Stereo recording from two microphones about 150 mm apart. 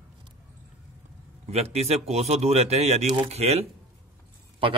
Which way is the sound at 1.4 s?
45° right (ahead or behind).